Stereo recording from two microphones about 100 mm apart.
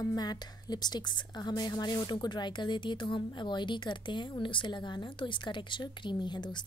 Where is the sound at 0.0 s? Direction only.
40° left (ahead or behind).